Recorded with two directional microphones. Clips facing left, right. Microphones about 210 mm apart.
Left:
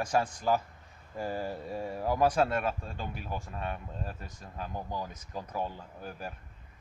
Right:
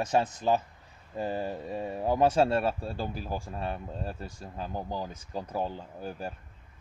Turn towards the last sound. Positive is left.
turn(degrees=-30)  # may be behind; listen again after turning